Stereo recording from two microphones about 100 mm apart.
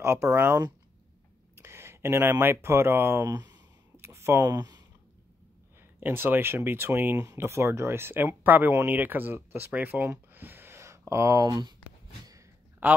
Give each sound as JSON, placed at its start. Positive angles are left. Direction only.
{"t": 0.0, "sound": "speech", "side_deg": -25}
{"t": 3.9, "sound": "a sound", "side_deg": -25}
{"t": 4.5, "sound": "speech", "side_deg": -40}
{"t": 5.8, "sound": "speech", "side_deg": -20}